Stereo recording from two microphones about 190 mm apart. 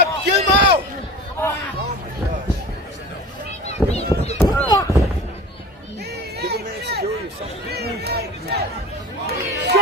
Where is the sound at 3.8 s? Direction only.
Centre (ahead or behind).